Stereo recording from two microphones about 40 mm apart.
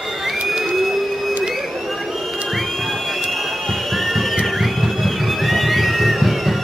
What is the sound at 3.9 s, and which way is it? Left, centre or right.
Music, centre.